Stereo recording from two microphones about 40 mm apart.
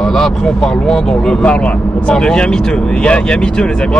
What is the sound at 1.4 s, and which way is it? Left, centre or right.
Speech, left.